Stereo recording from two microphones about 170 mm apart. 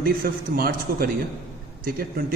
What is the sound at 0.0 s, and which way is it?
A man's voice, 60° right (ahead or behind).